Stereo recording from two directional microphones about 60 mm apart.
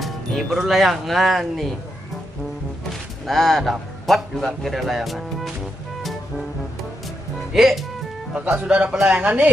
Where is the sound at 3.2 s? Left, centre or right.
Centre.